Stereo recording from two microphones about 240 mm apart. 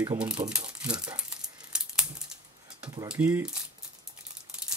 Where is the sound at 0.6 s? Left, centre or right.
Centre.